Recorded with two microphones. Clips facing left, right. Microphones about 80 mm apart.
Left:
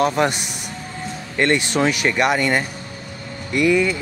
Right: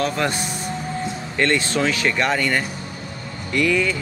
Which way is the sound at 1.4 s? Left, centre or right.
Centre.